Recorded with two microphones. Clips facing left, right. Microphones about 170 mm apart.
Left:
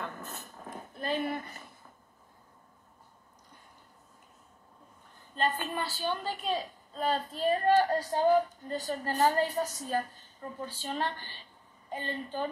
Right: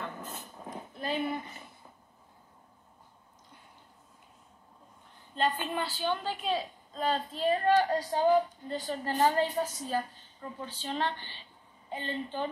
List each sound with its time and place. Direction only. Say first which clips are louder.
0.0 s dog: even; 15° right (ahead or behind)
0.9 s a sound: even; 40° left (ahead or behind)
5.3 s a woman's voice: right 1 dB; 45° left (ahead or behind)